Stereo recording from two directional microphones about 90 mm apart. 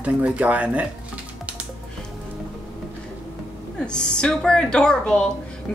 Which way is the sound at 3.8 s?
10° left (ahead or behind).